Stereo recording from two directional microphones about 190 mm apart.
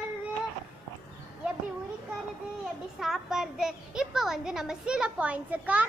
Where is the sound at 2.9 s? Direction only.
Centre (ahead or behind).